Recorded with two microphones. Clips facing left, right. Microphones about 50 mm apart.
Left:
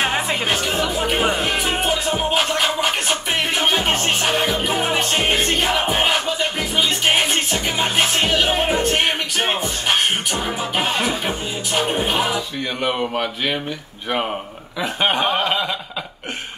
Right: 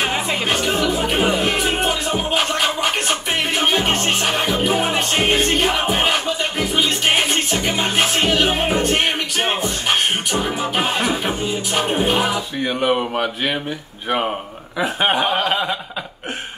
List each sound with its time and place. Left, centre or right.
0.9 s speech: centre
1.4 s music: centre
12.0 s music: centre
12.6 s a man's voice: centre
14.8 s speech: right